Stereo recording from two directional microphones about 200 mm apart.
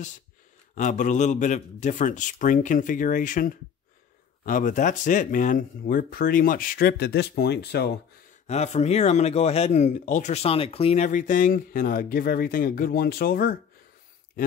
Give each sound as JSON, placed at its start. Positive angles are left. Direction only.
{"t": 0.7, "sound": "speech", "side_deg": 40}
{"t": 8.5, "sound": "speech", "side_deg": 35}